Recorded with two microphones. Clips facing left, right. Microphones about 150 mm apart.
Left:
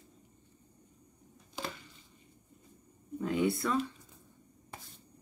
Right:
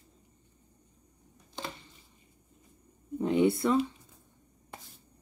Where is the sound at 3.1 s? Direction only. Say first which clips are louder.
Right 5 dB; 25° right (ahead or behind).